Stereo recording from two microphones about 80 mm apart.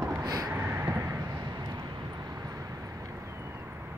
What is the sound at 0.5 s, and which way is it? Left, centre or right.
Vehicle, right.